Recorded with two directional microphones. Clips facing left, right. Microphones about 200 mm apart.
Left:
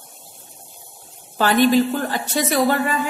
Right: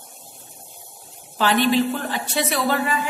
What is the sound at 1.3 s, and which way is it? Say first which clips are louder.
A woman's voice: left 3 dB; 45° left (ahead or behind).